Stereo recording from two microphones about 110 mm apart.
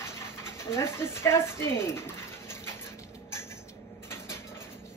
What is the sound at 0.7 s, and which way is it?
Speech, 25° left (ahead or behind).